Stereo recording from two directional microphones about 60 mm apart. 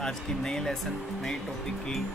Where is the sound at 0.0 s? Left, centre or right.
Centre.